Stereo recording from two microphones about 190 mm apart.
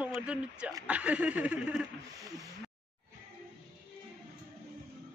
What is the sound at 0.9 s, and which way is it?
Chuckle, 5° right (ahead or behind).